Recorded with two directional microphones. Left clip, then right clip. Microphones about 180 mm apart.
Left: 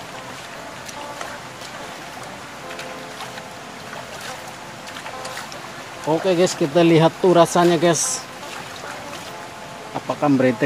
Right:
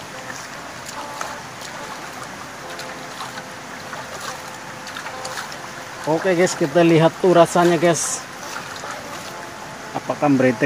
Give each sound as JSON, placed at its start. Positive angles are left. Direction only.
{"t": 6.0, "sound": "speech", "side_deg": 15}
{"t": 9.9, "sound": "speech", "side_deg": 0}